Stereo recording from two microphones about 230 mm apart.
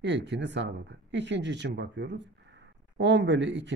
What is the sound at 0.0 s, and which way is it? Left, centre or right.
Speech, right.